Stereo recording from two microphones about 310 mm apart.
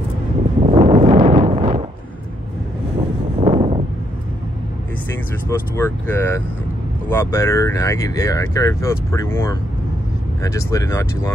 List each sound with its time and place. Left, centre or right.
0.7 s a sound: centre
3.3 s vehicle: centre
5.5 s speech: centre